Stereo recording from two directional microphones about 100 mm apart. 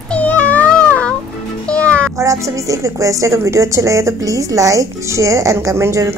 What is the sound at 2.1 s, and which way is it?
A woman's voice, 35° right (ahead or behind).